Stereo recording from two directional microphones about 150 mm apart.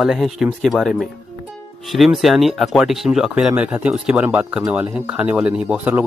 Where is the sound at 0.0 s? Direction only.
Centre (ahead or behind).